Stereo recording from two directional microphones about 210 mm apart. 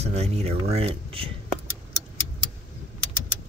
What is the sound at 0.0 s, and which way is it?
Speech, 30° right (ahead or behind).